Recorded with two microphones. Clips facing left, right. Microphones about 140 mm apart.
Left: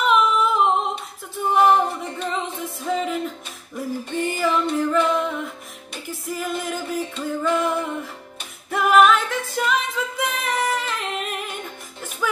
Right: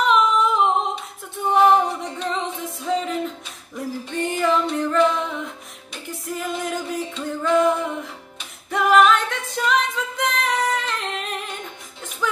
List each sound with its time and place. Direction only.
0.0 s humming: 5° left (ahead or behind)
1.5 s music: centre (ahead or behind)
8.6 s a capella: 5° left (ahead or behind)
12.2 s a sound: 5° left (ahead or behind)